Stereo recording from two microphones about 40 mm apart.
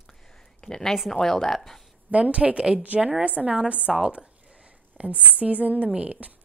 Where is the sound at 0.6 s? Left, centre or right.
Centre.